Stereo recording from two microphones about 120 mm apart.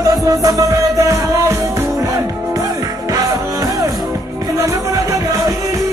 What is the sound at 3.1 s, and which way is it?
Music, 30° right (ahead or behind).